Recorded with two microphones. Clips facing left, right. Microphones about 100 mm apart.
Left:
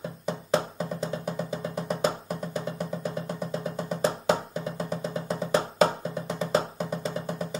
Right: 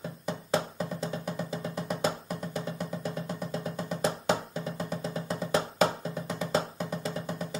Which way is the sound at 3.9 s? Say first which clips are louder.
Left 3 dB; 35° left (ahead or behind).